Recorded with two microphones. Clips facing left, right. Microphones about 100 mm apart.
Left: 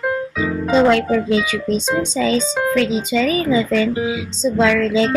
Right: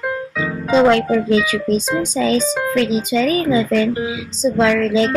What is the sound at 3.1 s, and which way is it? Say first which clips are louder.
Speech: right 1 dB; 10° right (ahead or behind).